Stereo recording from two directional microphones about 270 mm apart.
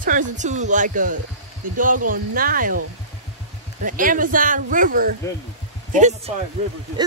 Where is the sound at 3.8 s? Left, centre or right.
Right.